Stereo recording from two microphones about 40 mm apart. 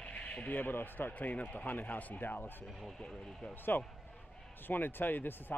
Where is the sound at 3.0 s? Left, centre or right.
Left.